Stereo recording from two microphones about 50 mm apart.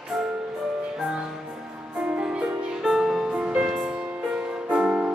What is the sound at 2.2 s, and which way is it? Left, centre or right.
Music, right.